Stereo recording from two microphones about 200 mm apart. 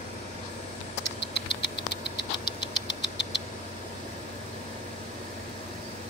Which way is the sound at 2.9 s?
60° left (ahead or behind).